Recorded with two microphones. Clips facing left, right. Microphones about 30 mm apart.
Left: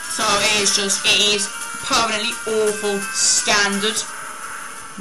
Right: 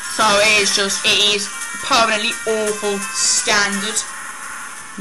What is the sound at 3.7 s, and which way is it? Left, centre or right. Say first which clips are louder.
Speech: left 1 dB; left.